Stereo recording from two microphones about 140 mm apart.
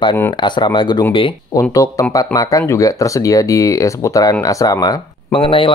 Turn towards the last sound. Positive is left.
turn(degrees=40)  # may be behind; listen again after turning